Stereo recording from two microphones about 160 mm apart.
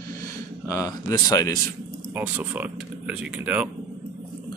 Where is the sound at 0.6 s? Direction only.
20° left (ahead or behind).